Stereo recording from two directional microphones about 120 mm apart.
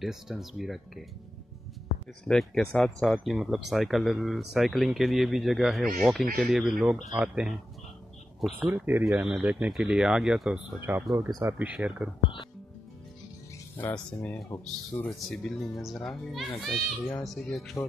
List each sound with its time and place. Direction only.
0.0 s speech: centre (ahead or behind)
2.2 s speech: 5° left (ahead or behind)
8.6 s speech: 15° right (ahead or behind)
10.9 s speech: 20° right (ahead or behind)
11.5 s speech: 10° right (ahead or behind)
13.7 s speech: 15° left (ahead or behind)
15.0 s speech: centre (ahead or behind)